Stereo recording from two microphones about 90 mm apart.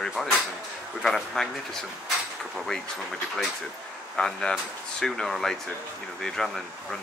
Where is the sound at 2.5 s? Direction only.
5° left (ahead or behind).